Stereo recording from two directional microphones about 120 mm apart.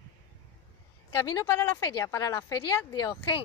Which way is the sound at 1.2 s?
25° left (ahead or behind).